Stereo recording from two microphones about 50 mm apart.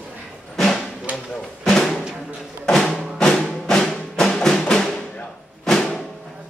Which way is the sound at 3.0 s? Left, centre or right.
Centre.